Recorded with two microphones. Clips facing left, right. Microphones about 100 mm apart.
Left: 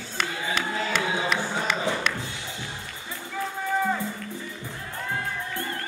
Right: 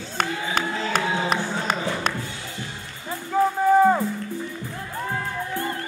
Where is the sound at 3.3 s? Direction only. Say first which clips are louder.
Right 11 dB; 40° right (ahead or behind).